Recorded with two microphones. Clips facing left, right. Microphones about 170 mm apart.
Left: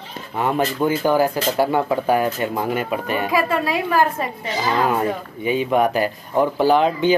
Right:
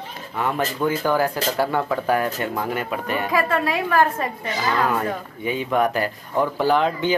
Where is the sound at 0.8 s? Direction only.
20° left (ahead or behind).